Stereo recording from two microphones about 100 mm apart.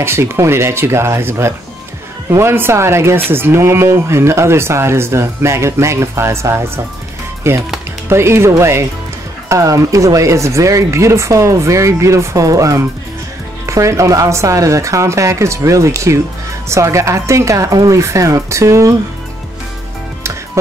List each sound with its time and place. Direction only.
0.0 s speech: 25° right (ahead or behind)